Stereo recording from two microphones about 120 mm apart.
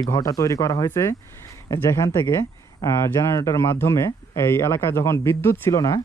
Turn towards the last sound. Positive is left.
turn(degrees=30)  # may be behind; listen again after turning